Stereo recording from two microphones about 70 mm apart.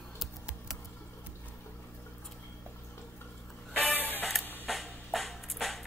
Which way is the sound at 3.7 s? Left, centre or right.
Left.